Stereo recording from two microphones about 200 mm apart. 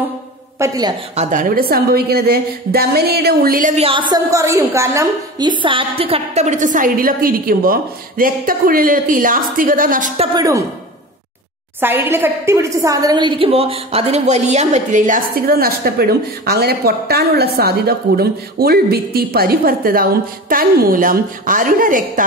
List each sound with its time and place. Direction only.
0.6 s a woman's voice: 20° right (ahead or behind)
1.1 s a woman's voice: 35° right (ahead or behind)
3.8 s a woman's voice: 25° right (ahead or behind); by 10.2 s 40° right (ahead or behind)
10.3 s a woman's voice: 15° right (ahead or behind)
11.8 s a woman's voice: 10° right (ahead or behind); by 22.2 s 40° right (ahead or behind)